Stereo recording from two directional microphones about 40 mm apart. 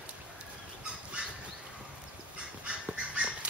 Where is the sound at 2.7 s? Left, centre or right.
Right.